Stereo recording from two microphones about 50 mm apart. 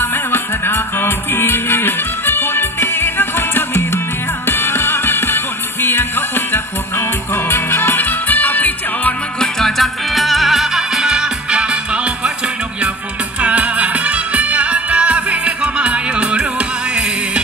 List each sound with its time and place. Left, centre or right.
0.0 s music: left
9.4 s music: centre; by 12.3 s right
13.4 s music: right